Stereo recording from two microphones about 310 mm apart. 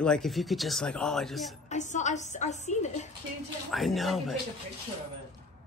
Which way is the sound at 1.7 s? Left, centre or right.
Left.